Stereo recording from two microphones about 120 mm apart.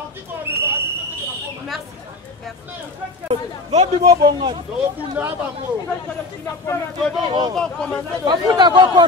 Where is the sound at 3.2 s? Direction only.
60° right (ahead or behind).